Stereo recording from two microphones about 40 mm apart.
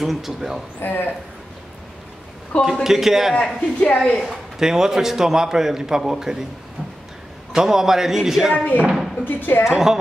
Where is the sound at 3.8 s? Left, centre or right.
Left.